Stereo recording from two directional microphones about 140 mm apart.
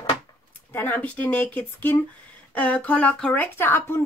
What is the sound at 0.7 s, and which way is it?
Speech, 10° left (ahead or behind).